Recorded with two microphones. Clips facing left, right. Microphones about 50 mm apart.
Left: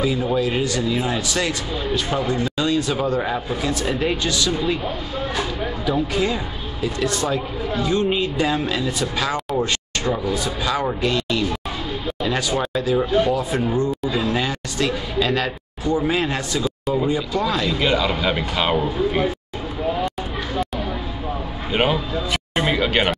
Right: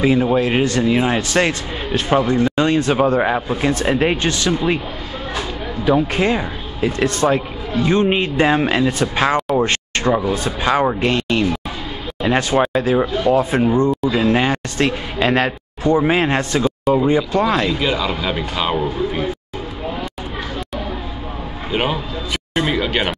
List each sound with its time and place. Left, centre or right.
0.0 s a man's voice: right
5.9 s a man's voice: right
9.6 s a sound: right
10.2 s a man's voice: right
17.7 s speech: centre
22.5 s speech: centre